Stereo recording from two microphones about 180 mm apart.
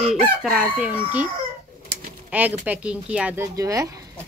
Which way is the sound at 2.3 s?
10° right (ahead or behind).